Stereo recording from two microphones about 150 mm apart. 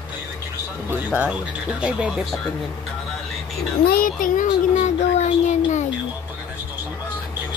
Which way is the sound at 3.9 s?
70° left (ahead or behind).